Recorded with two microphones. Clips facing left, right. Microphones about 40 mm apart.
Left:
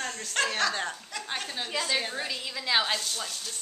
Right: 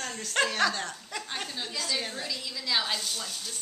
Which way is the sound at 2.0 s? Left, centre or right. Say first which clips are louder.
Left 3 dB; centre.